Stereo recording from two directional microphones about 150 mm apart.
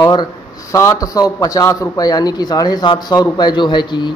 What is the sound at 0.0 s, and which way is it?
A man's voice, 25° left (ahead or behind).